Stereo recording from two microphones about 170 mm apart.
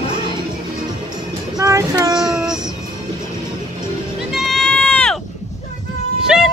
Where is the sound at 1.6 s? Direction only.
20° right (ahead or behind).